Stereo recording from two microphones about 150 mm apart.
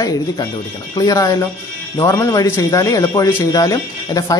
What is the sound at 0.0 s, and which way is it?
Speech, 25° left (ahead or behind).